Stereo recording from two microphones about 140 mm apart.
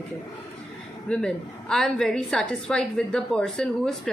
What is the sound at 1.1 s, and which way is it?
A woman's voice, 5° left (ahead or behind).